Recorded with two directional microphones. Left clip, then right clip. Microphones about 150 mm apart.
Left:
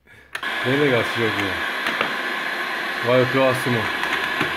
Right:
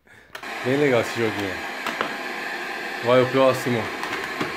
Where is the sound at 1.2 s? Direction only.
Centre (ahead or behind).